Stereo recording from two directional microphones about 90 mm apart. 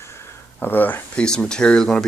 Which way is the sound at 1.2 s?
10° left (ahead or behind).